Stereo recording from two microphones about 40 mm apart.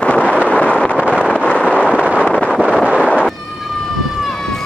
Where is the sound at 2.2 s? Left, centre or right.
Centre.